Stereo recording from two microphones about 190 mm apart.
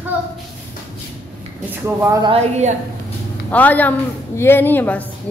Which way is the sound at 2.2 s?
30° right (ahead or behind).